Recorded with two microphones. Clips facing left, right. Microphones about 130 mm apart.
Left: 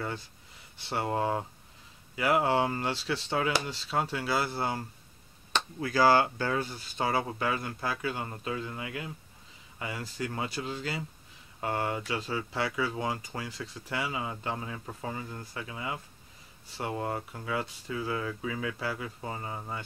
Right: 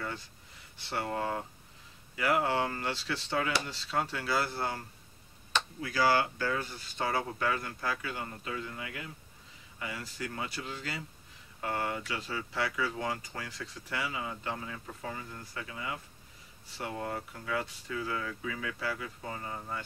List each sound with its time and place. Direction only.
0.8 s speech: 25° left (ahead or behind)
5.8 s speech: 35° left (ahead or behind)
7.0 s speech: 15° left (ahead or behind)